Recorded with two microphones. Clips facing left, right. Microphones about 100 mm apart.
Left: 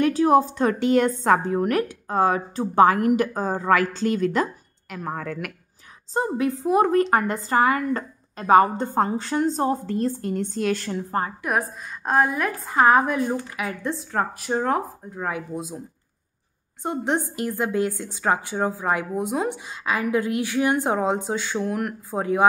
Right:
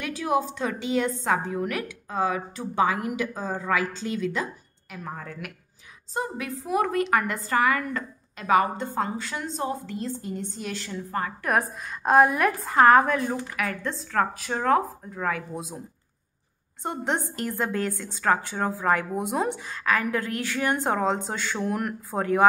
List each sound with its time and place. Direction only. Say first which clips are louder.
0.0 s a woman's voice: left 8 dB; 40° left (ahead or behind); by 5.5 s 60° left (ahead or behind)
6.1 s a woman's voice: left 7 dB; 30° left (ahead or behind)
9.9 s a woman's voice: left 7 dB; 55° left (ahead or behind)
11.1 s a woman's voice: left 3 dB; 35° left (ahead or behind)
11.4 s a woman's voice: even; centre (ahead or behind)
12.7 s a woman's voice: even; 10° left (ahead or behind)
15.5 s a woman's voice: left 4 dB; centre (ahead or behind)
16.8 s a woman's voice: left 3 dB; 5° left (ahead or behind)
19.6 s a woman's voice: even; 15° left (ahead or behind)